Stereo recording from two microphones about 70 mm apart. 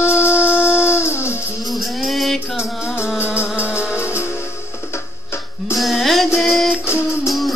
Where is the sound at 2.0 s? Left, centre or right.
Centre.